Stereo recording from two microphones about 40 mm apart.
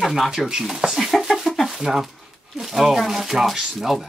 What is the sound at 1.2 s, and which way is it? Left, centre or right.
Bird, centre.